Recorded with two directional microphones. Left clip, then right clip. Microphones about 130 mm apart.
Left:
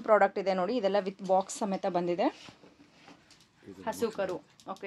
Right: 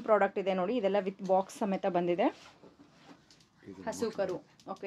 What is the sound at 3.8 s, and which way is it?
Speech, 15° left (ahead or behind).